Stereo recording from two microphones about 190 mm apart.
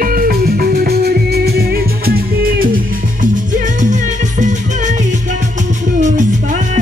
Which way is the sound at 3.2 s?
40° right (ahead or behind).